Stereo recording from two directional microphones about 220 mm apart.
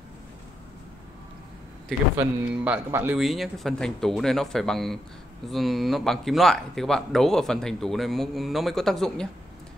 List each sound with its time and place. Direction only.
2.5 s speech: 5° right (ahead or behind)